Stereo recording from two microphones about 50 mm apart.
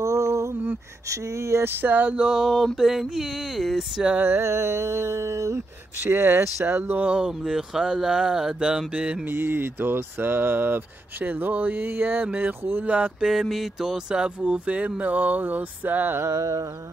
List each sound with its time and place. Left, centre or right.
0.0 s a sound: right
1.0 s speech: right
1.6 s a sound: right
2.0 s speech: centre
2.5 s a sound: centre
4.4 s mantra: right
6.1 s speech: right
6.8 s a sound: right
7.1 s speech: centre
9.2 s speech: right
12.8 s speech: right
13.2 s speech: centre; by 16.2 s right
16.2 s speech: right